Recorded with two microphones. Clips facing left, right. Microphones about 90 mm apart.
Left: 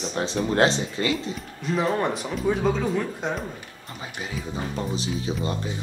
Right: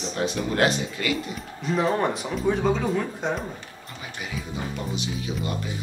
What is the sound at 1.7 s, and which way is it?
Speech, centre (ahead or behind).